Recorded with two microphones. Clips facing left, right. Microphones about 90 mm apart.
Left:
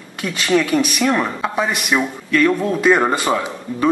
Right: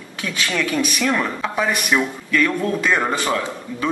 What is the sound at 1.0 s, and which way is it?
A man's voice, 15° left (ahead or behind).